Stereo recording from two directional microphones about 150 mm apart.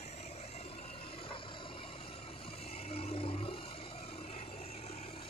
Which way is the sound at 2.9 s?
40° left (ahead or behind).